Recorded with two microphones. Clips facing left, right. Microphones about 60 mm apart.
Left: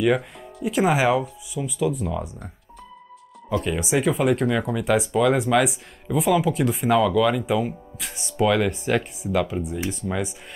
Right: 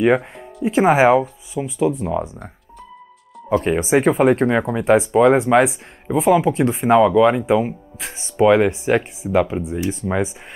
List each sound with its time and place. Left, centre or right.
0.7 s speech: right
3.4 s speech: right
8.6 s speech: centre